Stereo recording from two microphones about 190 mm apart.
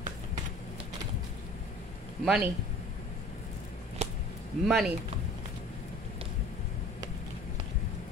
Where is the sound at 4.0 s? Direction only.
35° right (ahead or behind).